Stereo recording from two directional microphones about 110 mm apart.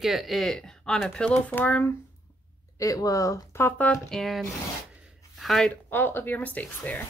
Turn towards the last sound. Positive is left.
turn(degrees=15)  # may be behind; listen again after turning